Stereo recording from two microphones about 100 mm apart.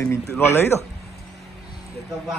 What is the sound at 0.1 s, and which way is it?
Speech, 25° left (ahead or behind).